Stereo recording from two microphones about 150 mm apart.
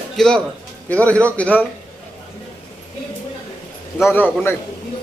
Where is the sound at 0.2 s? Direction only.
Centre (ahead or behind).